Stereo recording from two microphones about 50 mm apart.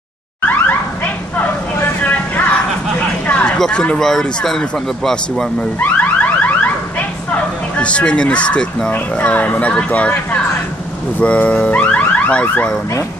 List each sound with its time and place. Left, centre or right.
0.5 s car alarm: left
2.0 s vehicle: left
3.3 s a sound: left
3.7 s speech: left
4.0 s speech: centre
5.8 s car alarm: left
8.9 s speech: left